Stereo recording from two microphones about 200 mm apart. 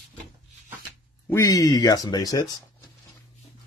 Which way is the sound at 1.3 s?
15° left (ahead or behind).